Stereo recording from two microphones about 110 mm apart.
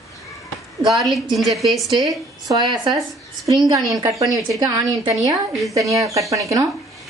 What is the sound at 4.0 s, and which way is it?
Speech, 30° right (ahead or behind).